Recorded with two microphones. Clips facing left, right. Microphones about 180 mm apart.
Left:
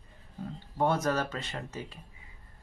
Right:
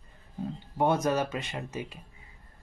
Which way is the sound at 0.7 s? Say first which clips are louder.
Right 2 dB; 20° right (ahead or behind).